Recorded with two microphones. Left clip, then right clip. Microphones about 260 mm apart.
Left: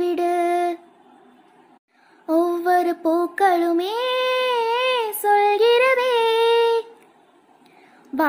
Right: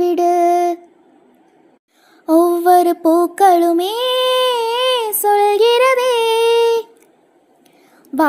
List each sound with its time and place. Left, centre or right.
0.0 s music: centre
2.2 s child singing: centre